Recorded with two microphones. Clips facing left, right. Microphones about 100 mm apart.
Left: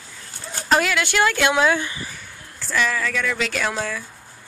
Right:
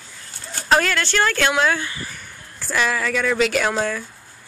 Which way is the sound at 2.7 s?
15° right (ahead or behind).